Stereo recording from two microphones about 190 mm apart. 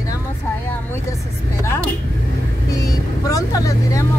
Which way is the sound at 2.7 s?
20° left (ahead or behind).